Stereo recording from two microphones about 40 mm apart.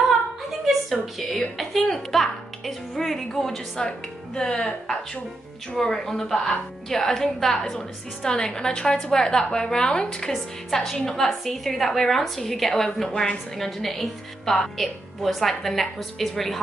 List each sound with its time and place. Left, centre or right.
0.5 s a sound: centre
1.6 s a woman's voice: centre
4.4 s a woman's voice: left; by 16.5 s centre